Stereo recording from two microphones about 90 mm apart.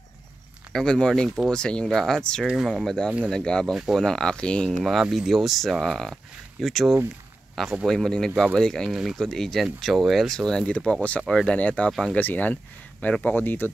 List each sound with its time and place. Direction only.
0.7 s speech: 10° left (ahead or behind)
2.4 s speech: 5° right (ahead or behind)
3.7 s speech: 5° right (ahead or behind)
4.0 s speech: 5° left (ahead or behind)
4.6 s speech: centre (ahead or behind); by 13.7 s 20° left (ahead or behind)